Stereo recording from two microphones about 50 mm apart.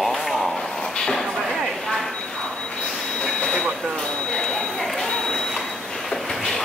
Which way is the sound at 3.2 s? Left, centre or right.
Centre.